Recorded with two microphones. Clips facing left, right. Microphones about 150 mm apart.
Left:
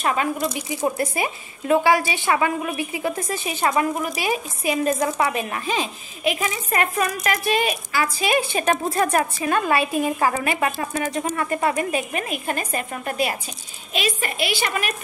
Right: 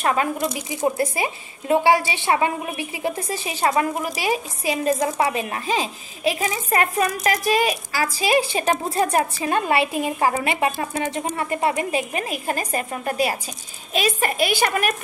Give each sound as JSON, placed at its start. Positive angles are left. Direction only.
{"t": 0.0, "sound": "speech", "side_deg": -40}
{"t": 0.7, "sound": "a woman's voice", "side_deg": -25}